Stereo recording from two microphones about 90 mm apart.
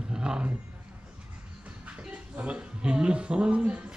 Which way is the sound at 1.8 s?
15° right (ahead or behind).